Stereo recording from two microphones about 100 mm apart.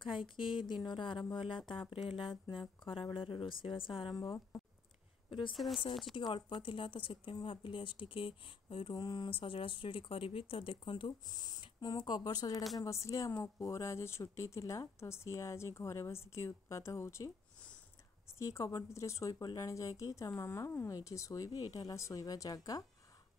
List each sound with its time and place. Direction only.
0.0 s speech: 60° left (ahead or behind)
5.5 s speech: centre (ahead or behind)
6.1 s speech: 50° left (ahead or behind)
9.0 s a woman's voice: 50° left (ahead or behind); by 17.3 s 30° left (ahead or behind)
18.4 s a woman's voice: 30° left (ahead or behind)